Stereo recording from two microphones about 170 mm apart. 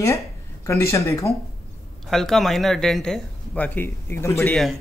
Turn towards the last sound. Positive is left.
turn(degrees=15)  # may be behind; listen again after turning